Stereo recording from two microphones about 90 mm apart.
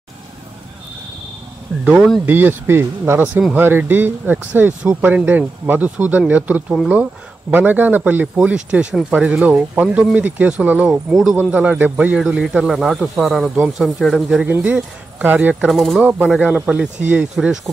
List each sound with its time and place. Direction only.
1.7 s speech: 15° left (ahead or behind)
2.2 s speech: 20° right (ahead or behind)
10.9 s speech: 5° right (ahead or behind)
14.4 s speech: 15° right (ahead or behind)
15.7 s speech: centre (ahead or behind)
16.0 s speech: 20° right (ahead or behind)